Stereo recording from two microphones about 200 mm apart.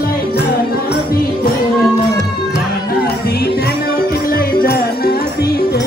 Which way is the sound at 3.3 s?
50° left (ahead or behind).